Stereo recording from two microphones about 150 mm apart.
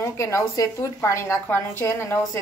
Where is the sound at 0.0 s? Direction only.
20° left (ahead or behind).